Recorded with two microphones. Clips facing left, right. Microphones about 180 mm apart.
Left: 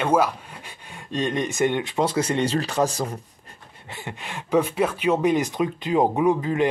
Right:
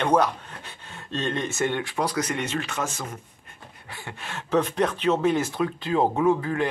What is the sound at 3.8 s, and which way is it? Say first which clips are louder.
Speech: left 3 dB; 20° left (ahead or behind).